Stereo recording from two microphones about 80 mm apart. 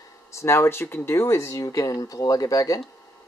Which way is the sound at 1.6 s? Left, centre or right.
Left.